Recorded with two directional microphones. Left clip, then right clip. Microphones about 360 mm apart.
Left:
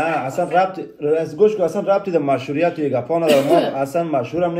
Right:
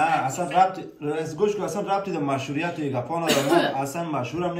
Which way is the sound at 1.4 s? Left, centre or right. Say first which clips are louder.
Left 7 dB; centre.